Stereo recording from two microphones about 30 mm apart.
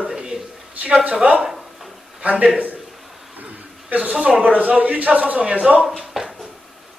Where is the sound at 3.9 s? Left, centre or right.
Right.